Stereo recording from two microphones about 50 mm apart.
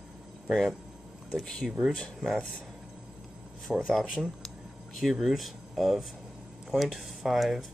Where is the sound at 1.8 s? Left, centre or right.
Centre.